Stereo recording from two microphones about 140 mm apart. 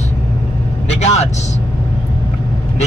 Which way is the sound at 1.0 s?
50° left (ahead or behind).